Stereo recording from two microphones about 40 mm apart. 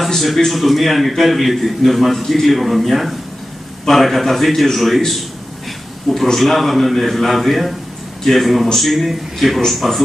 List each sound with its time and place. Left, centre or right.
0.0 s a man's voice: centre
6.3 s a man's voice: centre